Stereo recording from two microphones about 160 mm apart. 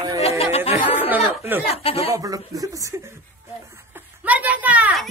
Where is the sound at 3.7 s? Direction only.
15° right (ahead or behind).